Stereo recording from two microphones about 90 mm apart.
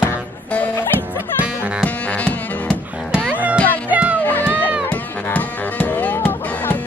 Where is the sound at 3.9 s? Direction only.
15° right (ahead or behind).